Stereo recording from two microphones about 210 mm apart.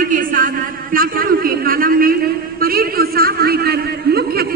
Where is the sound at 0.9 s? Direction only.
40° right (ahead or behind).